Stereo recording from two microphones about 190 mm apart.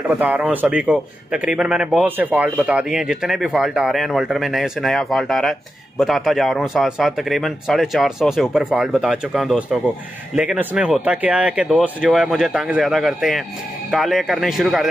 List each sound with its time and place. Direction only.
0.1 s a man's voice: 10° right (ahead or behind)